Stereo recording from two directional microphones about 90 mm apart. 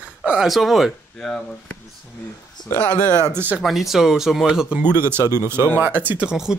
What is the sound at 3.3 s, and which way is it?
Speech, 20° right (ahead or behind).